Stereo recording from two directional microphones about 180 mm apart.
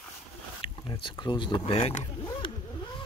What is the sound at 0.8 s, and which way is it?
Speech, 25° left (ahead or behind).